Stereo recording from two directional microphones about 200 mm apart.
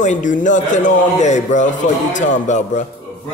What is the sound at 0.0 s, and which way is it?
A man's voice, 40° left (ahead or behind).